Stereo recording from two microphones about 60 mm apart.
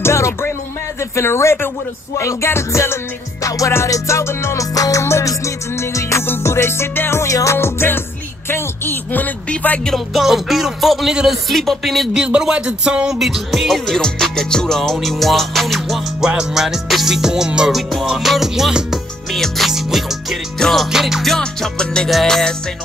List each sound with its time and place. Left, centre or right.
0.0 s music: left
3.4 s music: left
4.7 s music: left
5.0 s music: left
6.2 s music: left
7.5 s speech: left
9.9 s music: centre
12.1 s music: centre
16.2 s music: centre
17.6 s music: centre
19.3 s music: centre
20.5 s music: centre
21.4 s music: centre